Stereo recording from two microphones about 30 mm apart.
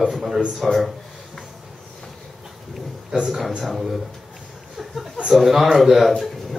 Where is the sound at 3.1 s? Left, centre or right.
Right.